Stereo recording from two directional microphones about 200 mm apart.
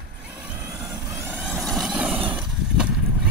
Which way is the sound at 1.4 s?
Centre (ahead or behind).